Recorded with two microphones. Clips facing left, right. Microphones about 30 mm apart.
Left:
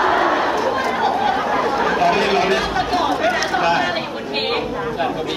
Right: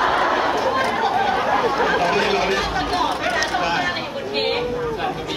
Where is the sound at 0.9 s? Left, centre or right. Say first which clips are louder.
Left 1 dB; centre.